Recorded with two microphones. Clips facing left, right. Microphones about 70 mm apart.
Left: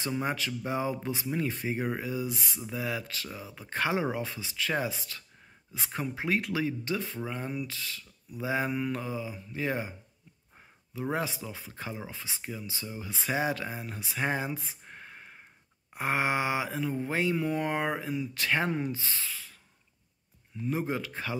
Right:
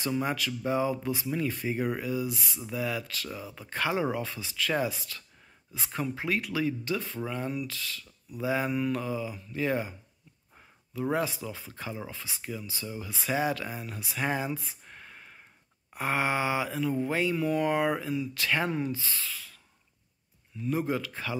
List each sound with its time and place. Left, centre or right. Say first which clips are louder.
0.2 s speech: right 1 dB; left
3.3 s speech: right 2 dB; centre
3.7 s speech: even; left
11.0 s speech: right 3 dB; left
20.6 s speech: right 2 dB; left